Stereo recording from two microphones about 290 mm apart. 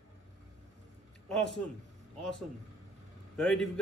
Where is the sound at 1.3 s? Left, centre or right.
Centre.